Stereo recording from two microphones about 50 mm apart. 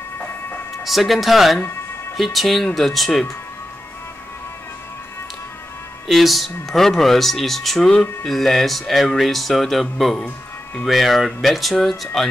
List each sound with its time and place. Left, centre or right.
0.8 s speech: centre
6.0 s speech: centre
7.9 s speech: centre
8.3 s speech: centre
10.2 s music: left
10.9 s speech: centre